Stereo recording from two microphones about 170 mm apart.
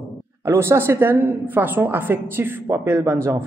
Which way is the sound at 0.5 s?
15° right (ahead or behind).